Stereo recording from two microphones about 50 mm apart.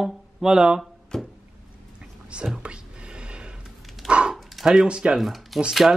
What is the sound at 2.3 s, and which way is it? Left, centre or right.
Speech, centre.